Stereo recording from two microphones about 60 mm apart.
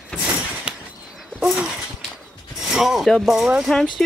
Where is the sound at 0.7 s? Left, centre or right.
Centre.